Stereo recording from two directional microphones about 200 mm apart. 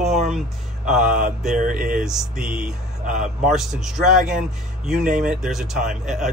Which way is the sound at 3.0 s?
40° right (ahead or behind).